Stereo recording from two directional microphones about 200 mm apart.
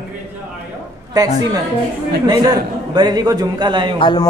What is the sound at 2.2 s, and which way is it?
A man's voice, 20° right (ahead or behind).